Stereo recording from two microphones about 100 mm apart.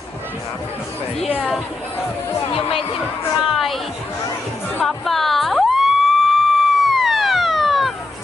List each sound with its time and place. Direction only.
2.5 s a woman's voice: 65° left (ahead or behind)
3.4 s chatter: centre (ahead or behind)
4.8 s a sound: centre (ahead or behind)